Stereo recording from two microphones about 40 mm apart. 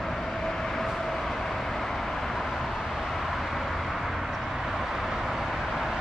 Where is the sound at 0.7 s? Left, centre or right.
Centre.